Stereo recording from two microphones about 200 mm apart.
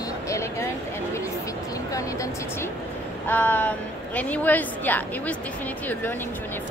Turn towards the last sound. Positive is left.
turn(degrees=10)  # may be behind; listen again after turning